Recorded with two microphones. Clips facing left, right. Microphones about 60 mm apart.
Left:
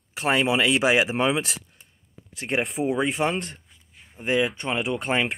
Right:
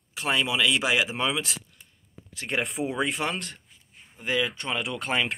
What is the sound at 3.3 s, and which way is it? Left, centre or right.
Speech, left.